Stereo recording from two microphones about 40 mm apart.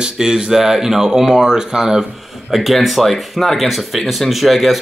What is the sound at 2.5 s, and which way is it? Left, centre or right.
Speech, centre.